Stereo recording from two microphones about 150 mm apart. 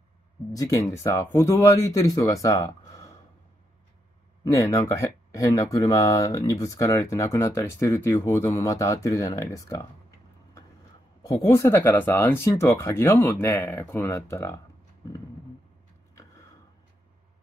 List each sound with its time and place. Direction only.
0.5 s speech: 25° left (ahead or behind)
4.5 s speech: 20° left (ahead or behind)
11.2 s speech: 20° left (ahead or behind)